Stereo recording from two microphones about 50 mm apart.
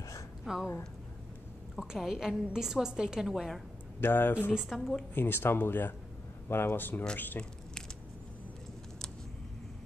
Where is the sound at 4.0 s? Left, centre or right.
Left.